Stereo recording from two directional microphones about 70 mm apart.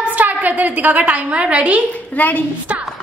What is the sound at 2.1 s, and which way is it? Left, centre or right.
Speech, left.